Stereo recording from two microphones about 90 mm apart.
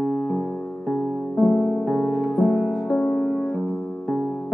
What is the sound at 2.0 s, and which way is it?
Music, 5° right (ahead or behind).